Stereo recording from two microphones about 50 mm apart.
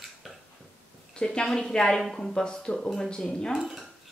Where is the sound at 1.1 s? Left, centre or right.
Centre.